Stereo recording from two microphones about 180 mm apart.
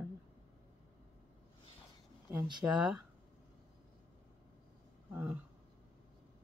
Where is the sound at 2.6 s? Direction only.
5° right (ahead or behind).